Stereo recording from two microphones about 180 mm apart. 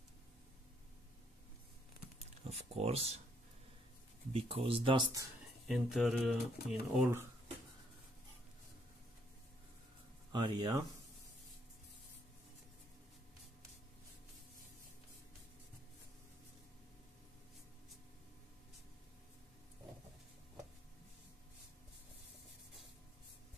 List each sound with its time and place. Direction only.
2.4 s speech: 35° right (ahead or behind)
4.3 s speech: 30° right (ahead or behind)
5.7 s speech: centre (ahead or behind)
10.3 s speech: 25° right (ahead or behind)